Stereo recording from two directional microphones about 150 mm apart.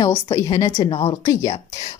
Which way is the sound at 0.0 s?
20° left (ahead or behind).